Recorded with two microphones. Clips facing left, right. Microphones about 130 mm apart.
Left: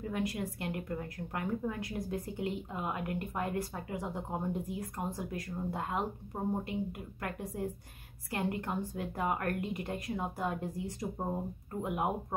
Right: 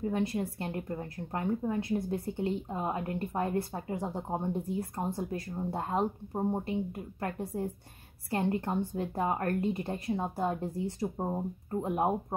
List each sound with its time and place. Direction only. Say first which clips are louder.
0.1 s a woman's voice: right 4 dB; 30° right (ahead or behind)